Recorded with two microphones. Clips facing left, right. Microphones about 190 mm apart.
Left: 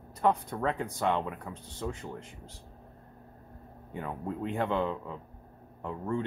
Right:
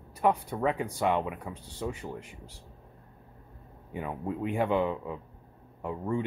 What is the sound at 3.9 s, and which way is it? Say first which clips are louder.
Speech: right 2 dB; 15° right (ahead or behind).